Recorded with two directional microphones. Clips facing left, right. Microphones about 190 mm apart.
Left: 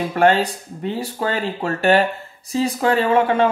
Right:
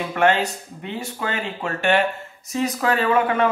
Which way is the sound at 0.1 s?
35° left (ahead or behind).